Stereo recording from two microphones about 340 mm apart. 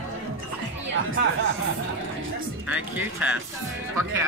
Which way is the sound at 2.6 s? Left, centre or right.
Centre.